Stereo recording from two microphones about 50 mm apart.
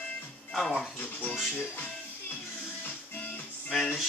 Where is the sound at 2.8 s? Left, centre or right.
Left.